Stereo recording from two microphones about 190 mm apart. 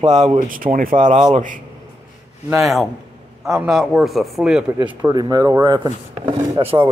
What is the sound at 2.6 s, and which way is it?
A man's voice, centre (ahead or behind).